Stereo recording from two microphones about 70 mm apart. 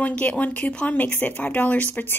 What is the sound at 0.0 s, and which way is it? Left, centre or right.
Speech, centre.